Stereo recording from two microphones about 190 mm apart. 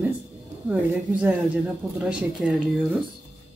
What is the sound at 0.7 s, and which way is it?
A woman's voice, 5° right (ahead or behind).